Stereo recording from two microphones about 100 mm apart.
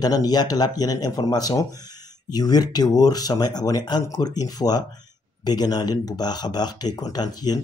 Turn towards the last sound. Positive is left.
turn(degrees=40)  # may be behind; listen again after turning